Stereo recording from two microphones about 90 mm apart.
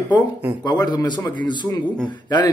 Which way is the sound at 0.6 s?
50° left (ahead or behind).